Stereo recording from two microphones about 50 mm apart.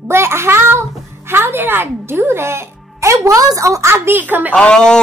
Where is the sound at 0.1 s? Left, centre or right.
Right.